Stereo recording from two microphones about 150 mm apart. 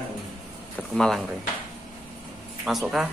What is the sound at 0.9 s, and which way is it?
Speech, 5° left (ahead or behind).